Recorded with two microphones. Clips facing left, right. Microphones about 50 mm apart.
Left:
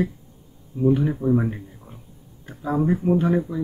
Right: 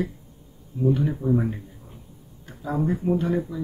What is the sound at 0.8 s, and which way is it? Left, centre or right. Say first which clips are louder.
Speech: left 3 dB; centre.